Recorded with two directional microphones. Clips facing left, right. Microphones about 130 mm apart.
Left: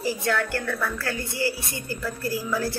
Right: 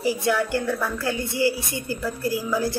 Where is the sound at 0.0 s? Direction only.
15° right (ahead or behind).